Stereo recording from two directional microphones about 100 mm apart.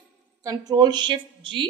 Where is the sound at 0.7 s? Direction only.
45° right (ahead or behind).